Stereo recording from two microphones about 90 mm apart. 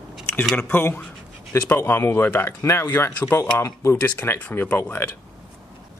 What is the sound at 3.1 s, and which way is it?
Speech, 20° left (ahead or behind).